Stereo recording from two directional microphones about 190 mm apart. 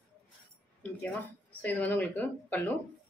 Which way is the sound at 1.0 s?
10° left (ahead or behind).